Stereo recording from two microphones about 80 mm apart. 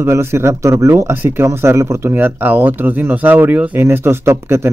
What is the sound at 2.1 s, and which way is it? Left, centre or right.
Speech, right.